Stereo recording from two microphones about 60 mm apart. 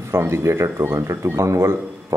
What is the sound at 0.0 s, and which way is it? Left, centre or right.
Speech, right.